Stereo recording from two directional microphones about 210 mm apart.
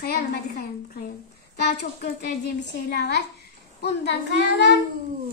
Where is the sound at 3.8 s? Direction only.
55° left (ahead or behind).